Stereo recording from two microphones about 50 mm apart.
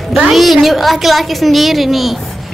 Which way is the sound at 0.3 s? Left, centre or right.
Centre.